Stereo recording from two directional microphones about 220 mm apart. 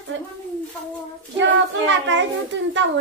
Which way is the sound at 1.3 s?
55° right (ahead or behind).